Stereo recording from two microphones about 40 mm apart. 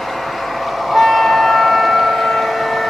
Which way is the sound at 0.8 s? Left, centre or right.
Centre.